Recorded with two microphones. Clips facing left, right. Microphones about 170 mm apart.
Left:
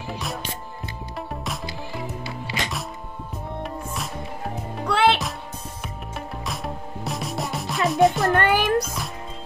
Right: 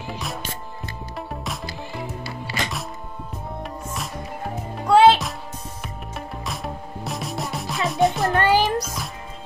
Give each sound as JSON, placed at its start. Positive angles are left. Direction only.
{"t": 0.1, "sound": "music", "side_deg": 0}
{"t": 2.2, "sound": "music", "side_deg": 15}
{"t": 3.6, "sound": "music", "side_deg": 0}
{"t": 4.8, "sound": "music", "side_deg": 65}
{"t": 6.1, "sound": "music", "side_deg": 0}
{"t": 8.3, "sound": "music", "side_deg": 55}
{"t": 8.8, "sound": "music", "side_deg": 0}